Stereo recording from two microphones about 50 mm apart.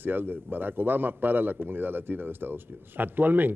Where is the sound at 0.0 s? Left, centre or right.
Right.